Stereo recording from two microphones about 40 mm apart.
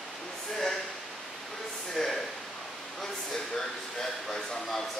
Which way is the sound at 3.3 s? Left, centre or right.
Centre.